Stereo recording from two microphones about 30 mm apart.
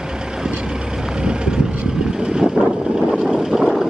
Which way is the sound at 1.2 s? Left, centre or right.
Right.